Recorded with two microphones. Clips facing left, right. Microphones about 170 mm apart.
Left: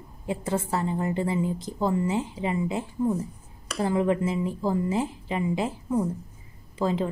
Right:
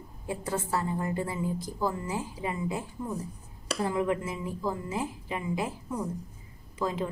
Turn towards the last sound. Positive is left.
turn(degrees=30)  # may be behind; listen again after turning